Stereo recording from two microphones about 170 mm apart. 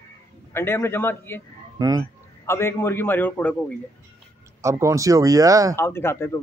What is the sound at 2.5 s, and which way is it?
Speech, 15° left (ahead or behind).